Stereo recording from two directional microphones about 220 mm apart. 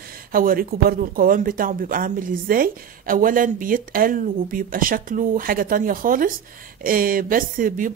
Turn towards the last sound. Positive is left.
turn(degrees=-40)  # may be behind; listen again after turning